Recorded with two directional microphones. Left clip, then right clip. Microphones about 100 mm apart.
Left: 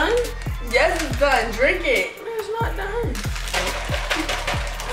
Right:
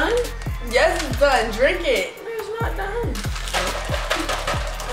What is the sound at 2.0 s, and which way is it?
Music, centre (ahead or behind).